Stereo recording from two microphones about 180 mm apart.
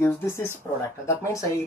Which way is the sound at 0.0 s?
15° left (ahead or behind).